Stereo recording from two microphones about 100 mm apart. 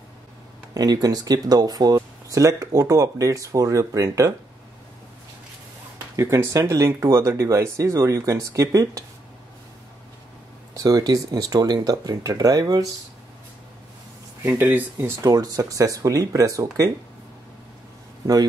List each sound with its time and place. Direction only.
0.7 s speech: 40° right (ahead or behind)
6.1 s speech: 30° right (ahead or behind)
10.7 s speech: 40° right (ahead or behind)
14.4 s speech: 20° right (ahead or behind)
15.2 s speech: 35° right (ahead or behind)